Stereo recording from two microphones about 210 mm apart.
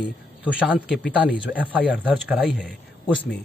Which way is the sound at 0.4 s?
5° right (ahead or behind).